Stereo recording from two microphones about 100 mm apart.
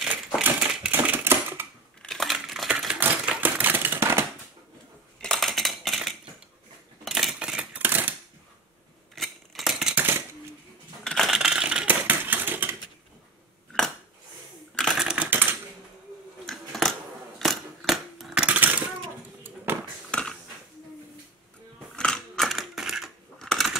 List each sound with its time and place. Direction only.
0.0 s typewriter: 15° right (ahead or behind)
2.0 s crushing: centre (ahead or behind)
3.0 s typewriter: 15° right (ahead or behind)
5.2 s cutlery: centre (ahead or behind)
7.1 s a sound: centre (ahead or behind); by 8.1 s 20° right (ahead or behind)
9.1 s scissors: centre (ahead or behind)
11.1 s typewriter: centre (ahead or behind); by 12.7 s 20° right (ahead or behind)
13.7 s a sound: 10° left (ahead or behind)
15.0 s typewriter: 10° right (ahead or behind)
16.4 s scissors: 5° left (ahead or behind)
17.4 s typewriter: centre (ahead or behind)
19.4 s a sound: 20° right (ahead or behind)
20.1 s mechanisms: 10° left (ahead or behind)
21.9 s coin: 10° left (ahead or behind)